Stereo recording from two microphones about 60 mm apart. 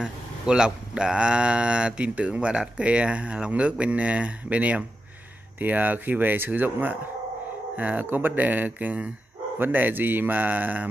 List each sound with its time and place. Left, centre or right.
0.0 s speech: centre